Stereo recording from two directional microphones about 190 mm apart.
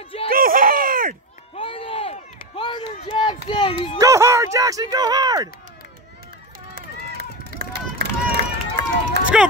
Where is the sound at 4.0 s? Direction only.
15° right (ahead or behind).